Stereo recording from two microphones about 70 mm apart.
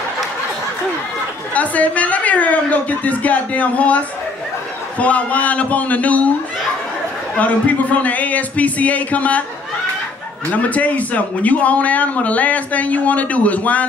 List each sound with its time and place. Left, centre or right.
1.5 s a man's voice: left
7.3 s a man's voice: left
10.5 s a man's voice: left